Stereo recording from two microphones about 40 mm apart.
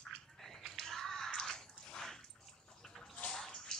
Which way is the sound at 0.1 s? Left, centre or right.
Centre.